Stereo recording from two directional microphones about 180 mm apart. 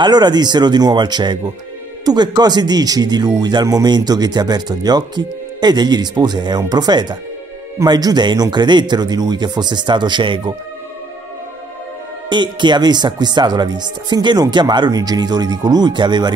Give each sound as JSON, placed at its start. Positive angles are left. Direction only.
{"t": 0.0, "sound": "speech", "side_deg": -25}
{"t": 12.3, "sound": "speech", "side_deg": -25}